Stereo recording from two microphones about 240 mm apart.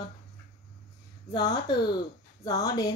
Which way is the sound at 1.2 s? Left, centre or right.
Centre.